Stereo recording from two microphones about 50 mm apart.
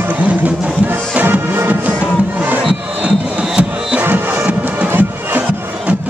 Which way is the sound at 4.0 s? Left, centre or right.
Right.